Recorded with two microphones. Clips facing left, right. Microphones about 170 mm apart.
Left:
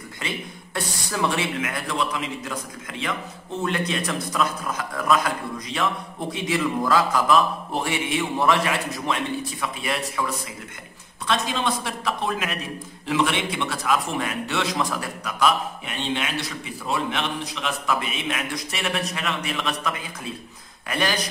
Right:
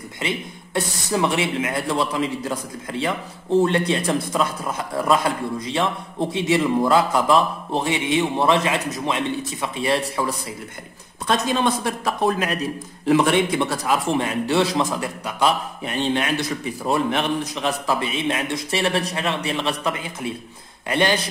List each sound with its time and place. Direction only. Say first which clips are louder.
0.2 s a man's voice: right 5 dB; 25° right (ahead or behind)
11.2 s a man's voice: right 4 dB; 45° right (ahead or behind); by 15.5 s 25° right (ahead or behind)
15.8 s a man's voice: right 5 dB; 45° right (ahead or behind); by 21.3 s 25° right (ahead or behind)